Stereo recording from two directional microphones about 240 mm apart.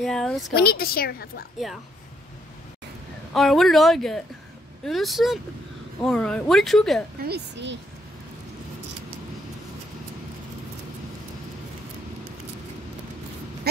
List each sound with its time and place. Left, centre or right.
0.0 s speech: centre
0.6 s a woman's voice: left
3.3 s speech: centre
7.2 s speech: right